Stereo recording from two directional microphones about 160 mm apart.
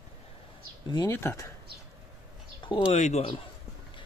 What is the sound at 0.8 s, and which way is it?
Speech, 25° left (ahead or behind).